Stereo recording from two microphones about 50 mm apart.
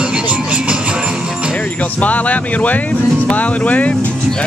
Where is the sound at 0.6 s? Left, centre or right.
Right.